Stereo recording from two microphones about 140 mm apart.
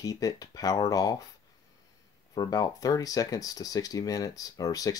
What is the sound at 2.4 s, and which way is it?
Speech, 25° left (ahead or behind).